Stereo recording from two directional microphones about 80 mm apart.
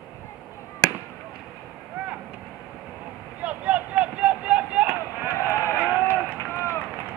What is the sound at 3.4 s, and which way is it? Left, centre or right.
Chop, centre.